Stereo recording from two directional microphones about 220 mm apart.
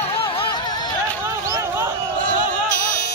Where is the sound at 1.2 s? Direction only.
10° right (ahead or behind).